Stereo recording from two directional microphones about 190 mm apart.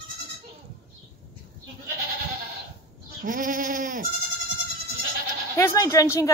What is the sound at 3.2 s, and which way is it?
Bleat, 45° right (ahead or behind).